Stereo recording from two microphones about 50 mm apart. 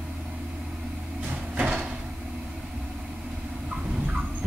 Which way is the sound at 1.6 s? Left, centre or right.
Right.